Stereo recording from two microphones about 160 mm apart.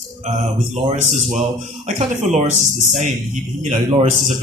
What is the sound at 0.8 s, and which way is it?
Speech, 50° right (ahead or behind).